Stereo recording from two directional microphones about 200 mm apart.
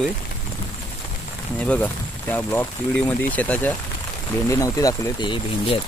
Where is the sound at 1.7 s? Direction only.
10° left (ahead or behind).